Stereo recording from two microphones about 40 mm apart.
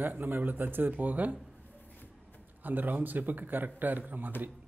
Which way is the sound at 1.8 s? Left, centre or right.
Left.